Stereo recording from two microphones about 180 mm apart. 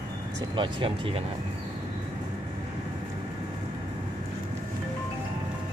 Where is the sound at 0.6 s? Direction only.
30° right (ahead or behind).